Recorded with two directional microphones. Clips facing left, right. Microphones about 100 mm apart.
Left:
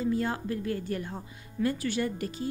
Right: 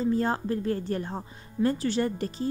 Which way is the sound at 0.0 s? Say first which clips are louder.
Right 3 dB; 35° right (ahead or behind).